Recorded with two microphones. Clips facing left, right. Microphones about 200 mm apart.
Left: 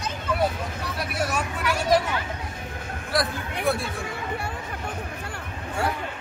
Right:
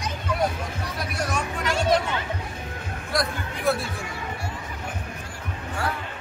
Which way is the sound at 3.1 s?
Centre (ahead or behind).